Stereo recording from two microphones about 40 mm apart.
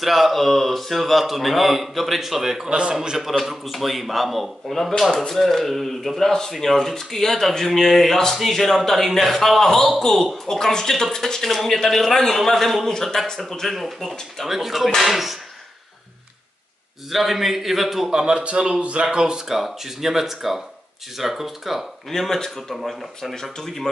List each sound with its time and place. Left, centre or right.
0.0 s a man's voice: centre
3.4 s a man's voice: centre
17.1 s a man's voice: centre
18.1 s a man's voice: right; by 21.8 s centre
22.1 s a man's voice: centre